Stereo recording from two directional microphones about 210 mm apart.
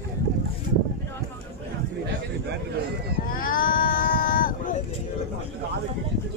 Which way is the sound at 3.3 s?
40° left (ahead or behind).